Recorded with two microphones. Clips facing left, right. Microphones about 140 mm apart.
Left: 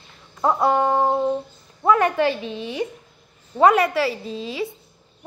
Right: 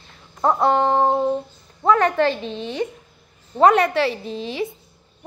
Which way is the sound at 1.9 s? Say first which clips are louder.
Right 1 dB; 10° left (ahead or behind).